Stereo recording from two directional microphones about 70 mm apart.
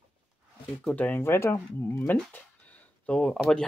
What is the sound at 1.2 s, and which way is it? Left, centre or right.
Speech, left.